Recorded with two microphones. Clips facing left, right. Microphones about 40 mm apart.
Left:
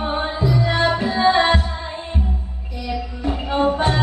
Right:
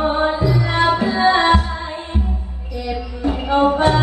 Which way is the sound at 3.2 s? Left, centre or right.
Right.